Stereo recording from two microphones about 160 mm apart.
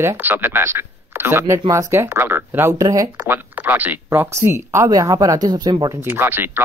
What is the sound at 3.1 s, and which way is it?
Speech, 10° right (ahead or behind).